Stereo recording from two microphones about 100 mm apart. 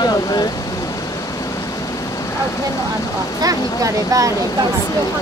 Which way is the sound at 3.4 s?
35° right (ahead or behind).